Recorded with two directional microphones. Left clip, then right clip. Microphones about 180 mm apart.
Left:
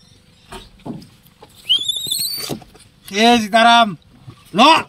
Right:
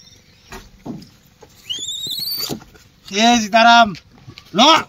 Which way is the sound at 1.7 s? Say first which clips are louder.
Left 7 dB; centre (ahead or behind).